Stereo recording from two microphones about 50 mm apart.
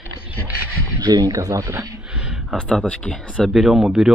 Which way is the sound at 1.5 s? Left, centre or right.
Right.